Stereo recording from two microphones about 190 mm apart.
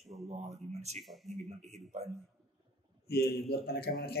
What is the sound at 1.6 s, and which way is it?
Speech, 35° right (ahead or behind).